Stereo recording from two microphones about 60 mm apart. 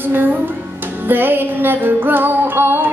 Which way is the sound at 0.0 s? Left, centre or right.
Right.